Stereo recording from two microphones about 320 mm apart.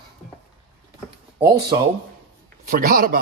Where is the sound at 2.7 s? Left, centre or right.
Right.